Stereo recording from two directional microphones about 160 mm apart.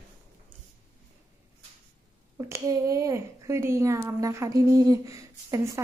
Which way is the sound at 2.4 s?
20° right (ahead or behind).